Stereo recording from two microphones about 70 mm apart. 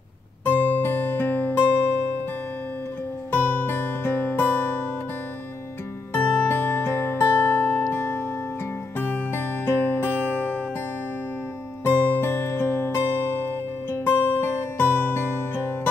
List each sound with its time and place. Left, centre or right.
0.5 s music: left
3.3 s music: left
6.1 s music: left
11.8 s music: left
14.0 s music: left